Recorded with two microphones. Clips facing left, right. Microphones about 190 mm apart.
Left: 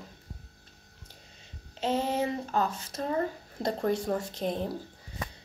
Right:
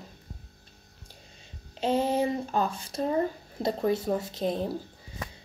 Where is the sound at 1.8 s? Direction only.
10° right (ahead or behind).